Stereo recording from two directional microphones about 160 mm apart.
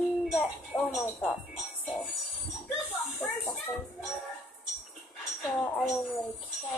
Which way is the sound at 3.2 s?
Centre (ahead or behind).